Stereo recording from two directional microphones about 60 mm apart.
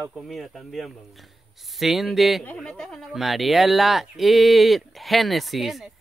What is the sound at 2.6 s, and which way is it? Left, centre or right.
Speech, centre.